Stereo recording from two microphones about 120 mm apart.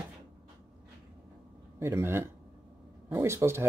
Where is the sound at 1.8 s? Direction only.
20° right (ahead or behind).